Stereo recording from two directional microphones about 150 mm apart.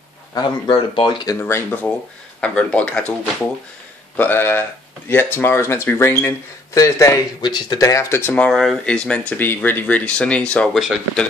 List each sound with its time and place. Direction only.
0.3 s speech: 30° left (ahead or behind)
1.4 s speech: 10° left (ahead or behind)
4.2 s speech: 15° left (ahead or behind)